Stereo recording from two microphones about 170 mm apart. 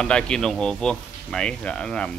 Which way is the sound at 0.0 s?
5° left (ahead or behind).